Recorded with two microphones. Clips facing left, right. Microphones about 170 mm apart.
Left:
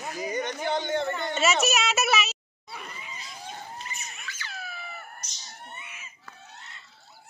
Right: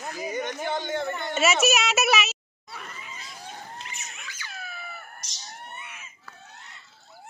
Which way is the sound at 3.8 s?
90° right.